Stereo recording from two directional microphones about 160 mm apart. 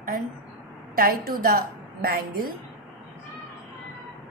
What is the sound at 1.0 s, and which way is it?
A woman's voice, 65° right (ahead or behind).